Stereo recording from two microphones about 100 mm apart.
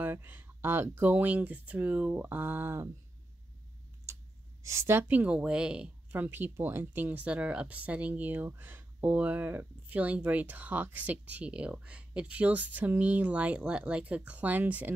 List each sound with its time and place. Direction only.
0.0 s speech: 20° right (ahead or behind)
4.1 s a sound: 30° right (ahead or behind)
4.6 s speech: 25° right (ahead or behind)